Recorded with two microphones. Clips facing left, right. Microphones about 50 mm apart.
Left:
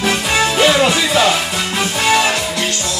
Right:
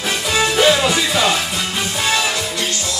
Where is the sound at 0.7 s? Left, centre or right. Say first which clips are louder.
Left 4 dB; left.